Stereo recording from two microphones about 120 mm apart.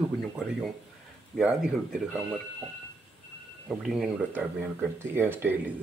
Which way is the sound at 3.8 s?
Centre (ahead or behind).